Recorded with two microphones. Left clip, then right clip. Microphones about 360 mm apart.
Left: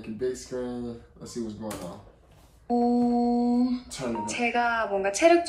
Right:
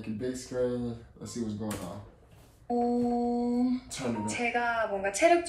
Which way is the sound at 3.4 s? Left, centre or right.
Centre.